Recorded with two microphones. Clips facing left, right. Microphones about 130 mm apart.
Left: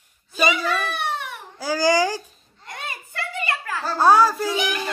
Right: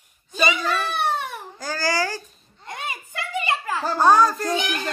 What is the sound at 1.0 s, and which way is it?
Baby cry, 35° right (ahead or behind).